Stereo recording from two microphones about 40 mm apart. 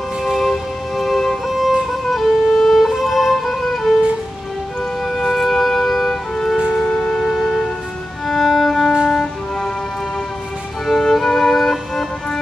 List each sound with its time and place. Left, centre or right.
0.2 s music: centre
1.5 s violin: centre
5.0 s music: centre
7.2 s music: centre
8.5 s violin: centre
9.1 s music: centre
10.9 s music: centre